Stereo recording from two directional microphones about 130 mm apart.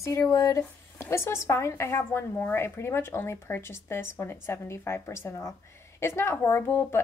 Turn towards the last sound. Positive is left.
turn(degrees=20)  # may be behind; listen again after turning